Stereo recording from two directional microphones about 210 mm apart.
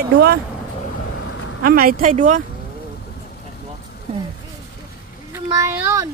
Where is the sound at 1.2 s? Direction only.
60° left (ahead or behind).